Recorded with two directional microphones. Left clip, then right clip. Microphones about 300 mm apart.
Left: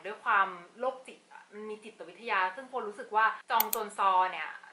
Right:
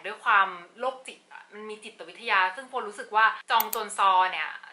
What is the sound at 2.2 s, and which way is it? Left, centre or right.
A woman's voice, centre.